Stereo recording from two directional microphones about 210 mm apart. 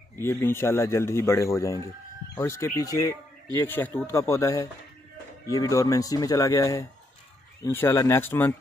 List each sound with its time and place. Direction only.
0.2 s speech: 10° left (ahead or behind)